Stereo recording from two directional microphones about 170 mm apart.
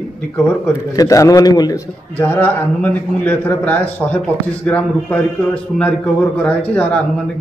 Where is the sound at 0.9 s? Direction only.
20° left (ahead or behind).